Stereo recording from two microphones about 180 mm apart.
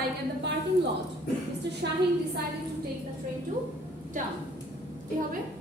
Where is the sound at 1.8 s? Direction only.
70° right (ahead or behind).